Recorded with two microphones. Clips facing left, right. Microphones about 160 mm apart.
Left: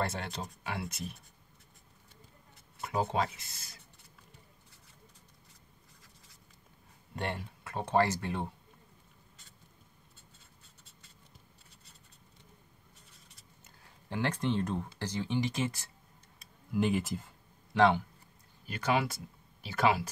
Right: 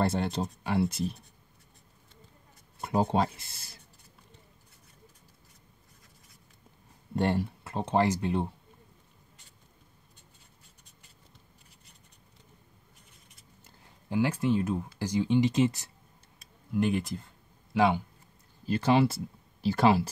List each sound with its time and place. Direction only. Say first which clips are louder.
0.0 s speech: right 7 dB; 30° right (ahead or behind)
2.8 s speech: right 5 dB; 35° right (ahead or behind)
7.2 s speech: right 10 dB; 35° right (ahead or behind)
7.7 s speech: right 2 dB; 20° right (ahead or behind)
14.0 s speech: right 5 dB; 10° right (ahead or behind)
16.7 s speech: right 2 dB; centre (ahead or behind)
17.7 s speech: even; 10° right (ahead or behind)
18.7 s speech: right 7 dB; 30° right (ahead or behind)